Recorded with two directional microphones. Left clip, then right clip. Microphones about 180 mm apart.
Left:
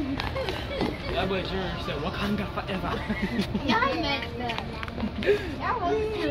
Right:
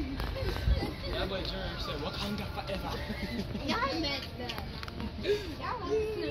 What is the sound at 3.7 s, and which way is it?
Speech, 65° left (ahead or behind).